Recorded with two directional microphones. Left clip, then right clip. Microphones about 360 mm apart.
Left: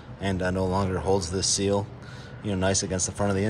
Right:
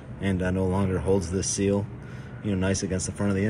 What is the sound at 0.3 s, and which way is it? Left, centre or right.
Speech, centre.